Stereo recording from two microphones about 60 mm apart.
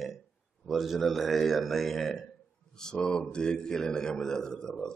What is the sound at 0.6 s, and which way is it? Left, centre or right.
A man's voice, centre.